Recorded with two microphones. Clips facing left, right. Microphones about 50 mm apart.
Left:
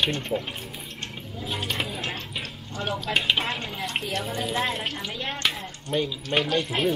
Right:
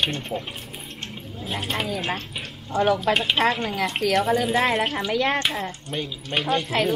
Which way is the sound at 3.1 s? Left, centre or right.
Right.